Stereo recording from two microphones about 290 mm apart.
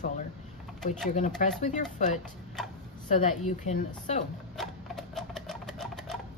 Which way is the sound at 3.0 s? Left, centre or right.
Left.